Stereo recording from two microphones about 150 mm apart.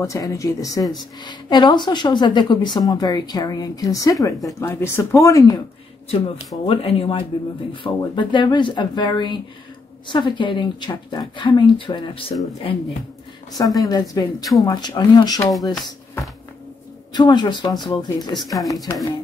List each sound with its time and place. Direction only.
0.0 s speech: 20° left (ahead or behind)
6.8 s speech: 40° left (ahead or behind)
13.7 s speech: 25° left (ahead or behind)
17.1 s speech: 30° left (ahead or behind)